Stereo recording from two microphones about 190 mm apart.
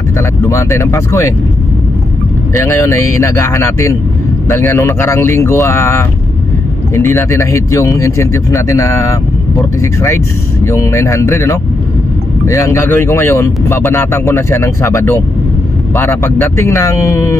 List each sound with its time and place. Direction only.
0.2 s speech: 15° left (ahead or behind)
2.5 s speech: 15° left (ahead or behind)